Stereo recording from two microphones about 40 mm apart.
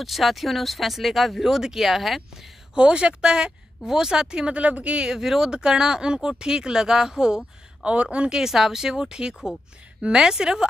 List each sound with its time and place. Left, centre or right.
0.0 s speech: centre
2.7 s speech: right
5.0 s speech: centre
7.9 s speech: right
8.4 s speech: centre